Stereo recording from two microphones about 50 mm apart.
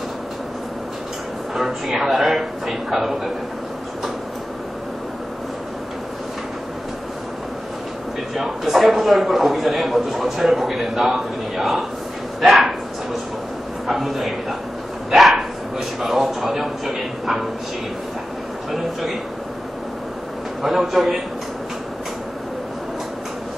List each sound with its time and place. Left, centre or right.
1.5 s a man's voice: centre
8.4 s a man's voice: centre
12.4 s bow-wow: centre
13.8 s a man's voice: centre
15.0 s dog: centre
16.0 s a man's voice: centre
18.7 s a man's voice: centre
20.6 s a man's voice: centre